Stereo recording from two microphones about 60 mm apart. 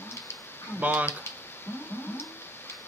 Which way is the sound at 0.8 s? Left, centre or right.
Right.